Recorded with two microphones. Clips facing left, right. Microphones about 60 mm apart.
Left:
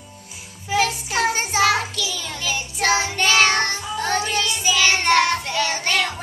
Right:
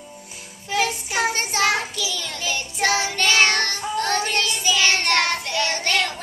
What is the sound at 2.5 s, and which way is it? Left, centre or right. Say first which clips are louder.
Child singing: left 1 dB; centre.